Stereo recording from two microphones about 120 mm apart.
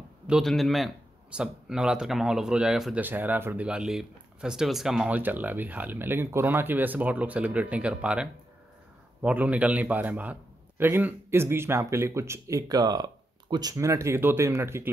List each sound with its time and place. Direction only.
0.3 s speech: centre (ahead or behind)
3.0 s speech: 15° right (ahead or behind)
5.1 s speech: 15° right (ahead or behind)